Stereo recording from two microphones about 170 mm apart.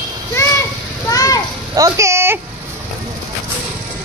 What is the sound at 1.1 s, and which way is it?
Children playing, 20° left (ahead or behind).